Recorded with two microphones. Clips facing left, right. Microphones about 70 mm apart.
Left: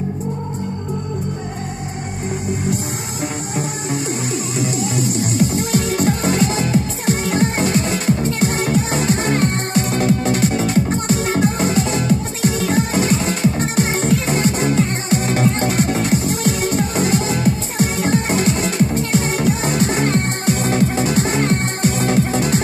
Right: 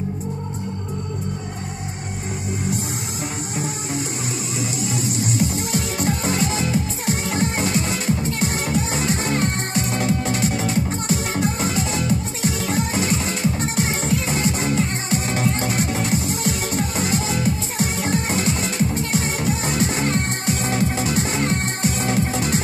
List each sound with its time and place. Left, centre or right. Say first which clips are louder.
4.6 s music: left 5 dB; left